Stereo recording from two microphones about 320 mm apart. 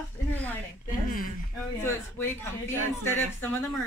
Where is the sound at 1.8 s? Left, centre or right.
Centre.